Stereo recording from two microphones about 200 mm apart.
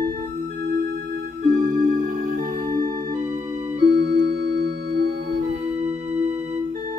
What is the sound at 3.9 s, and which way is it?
Music, 55° right (ahead or behind).